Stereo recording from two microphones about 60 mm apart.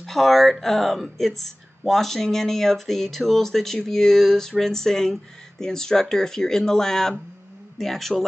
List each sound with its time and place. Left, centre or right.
0.0 s speech: centre